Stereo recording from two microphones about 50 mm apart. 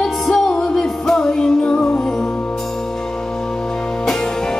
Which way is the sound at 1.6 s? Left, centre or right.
Left.